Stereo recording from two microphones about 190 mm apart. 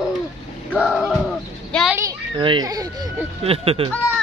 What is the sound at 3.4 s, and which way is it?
Speech, 30° right (ahead or behind).